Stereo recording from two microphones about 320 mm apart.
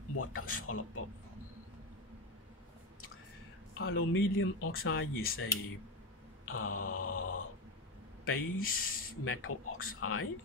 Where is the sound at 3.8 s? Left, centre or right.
Left.